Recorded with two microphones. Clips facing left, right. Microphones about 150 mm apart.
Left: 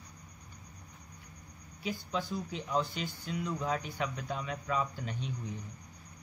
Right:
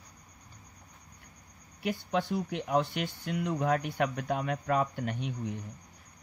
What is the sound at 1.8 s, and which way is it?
Speech, 65° right (ahead or behind).